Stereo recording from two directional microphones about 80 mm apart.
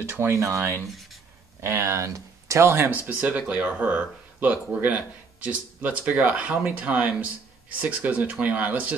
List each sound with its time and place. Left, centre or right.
0.2 s speech: right; by 8.9 s centre